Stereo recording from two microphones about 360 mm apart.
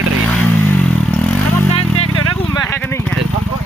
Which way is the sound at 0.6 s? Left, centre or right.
Centre.